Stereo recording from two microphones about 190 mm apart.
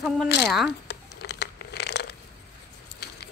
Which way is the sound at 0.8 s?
60° left (ahead or behind).